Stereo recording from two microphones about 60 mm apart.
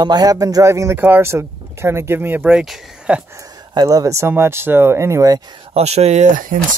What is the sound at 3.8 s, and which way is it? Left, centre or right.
Speech, right.